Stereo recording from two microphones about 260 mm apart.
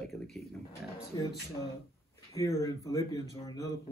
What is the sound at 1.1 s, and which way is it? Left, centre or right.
Speech, centre.